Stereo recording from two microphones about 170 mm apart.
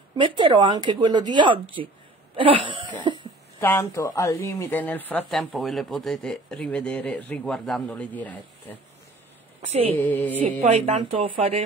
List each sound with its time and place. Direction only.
0.4 s a woman's voice: 30° right (ahead or behind)
3.0 s cough: 25° right (ahead or behind)
3.6 s speech: 15° left (ahead or behind)
9.7 s speech: 35° right (ahead or behind)
9.9 s speech: 10° left (ahead or behind)
10.6 s speech: 40° right (ahead or behind)